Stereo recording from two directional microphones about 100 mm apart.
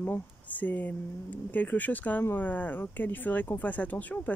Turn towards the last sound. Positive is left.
turn(degrees=15)  # may be behind; listen again after turning